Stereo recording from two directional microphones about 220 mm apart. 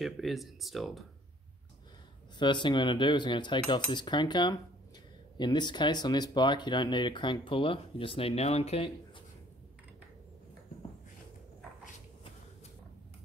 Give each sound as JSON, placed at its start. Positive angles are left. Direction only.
{"t": 0.0, "sound": "speech", "side_deg": 0}
{"t": 2.3, "sound": "speech", "side_deg": 20}